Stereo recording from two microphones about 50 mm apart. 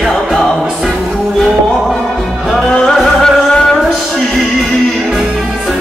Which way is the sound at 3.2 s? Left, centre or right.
Centre.